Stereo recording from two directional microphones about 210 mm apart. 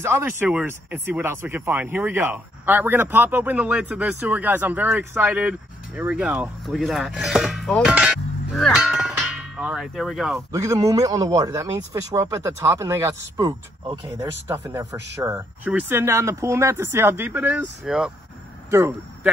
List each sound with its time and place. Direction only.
0.0 s speech: 10° right (ahead or behind)
10.5 s speech: 15° right (ahead or behind)